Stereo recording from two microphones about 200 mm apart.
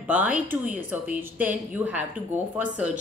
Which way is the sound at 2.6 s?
40° right (ahead or behind).